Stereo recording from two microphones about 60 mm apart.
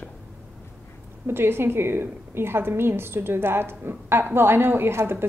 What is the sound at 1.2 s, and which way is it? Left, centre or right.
A woman's voice, right.